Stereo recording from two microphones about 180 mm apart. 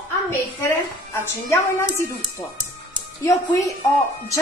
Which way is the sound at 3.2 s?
20° left (ahead or behind).